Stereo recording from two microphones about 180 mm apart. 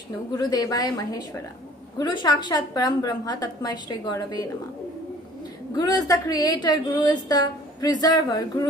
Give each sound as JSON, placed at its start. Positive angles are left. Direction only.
{"t": 0.3, "sound": "speech", "side_deg": 20}
{"t": 5.8, "sound": "speech", "side_deg": 20}